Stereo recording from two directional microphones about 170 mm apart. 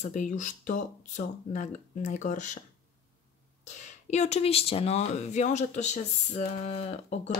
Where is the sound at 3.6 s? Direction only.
45° left (ahead or behind).